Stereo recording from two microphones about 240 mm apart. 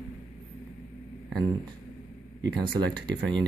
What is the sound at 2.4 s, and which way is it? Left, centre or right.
Speech, centre.